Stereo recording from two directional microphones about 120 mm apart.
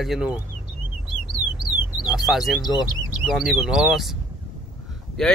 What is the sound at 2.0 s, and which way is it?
Speech, 5° right (ahead or behind).